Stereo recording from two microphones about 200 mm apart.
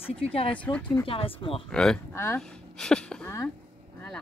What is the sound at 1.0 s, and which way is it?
Speech, 25° left (ahead or behind).